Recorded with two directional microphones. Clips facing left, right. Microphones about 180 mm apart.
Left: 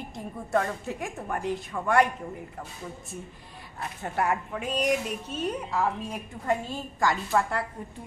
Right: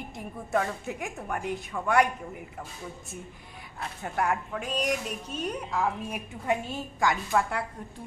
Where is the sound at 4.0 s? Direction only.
5° left (ahead or behind).